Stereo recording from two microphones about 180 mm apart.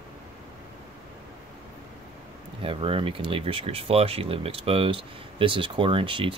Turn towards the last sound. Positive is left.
turn(degrees=-30)  # may be behind; listen again after turning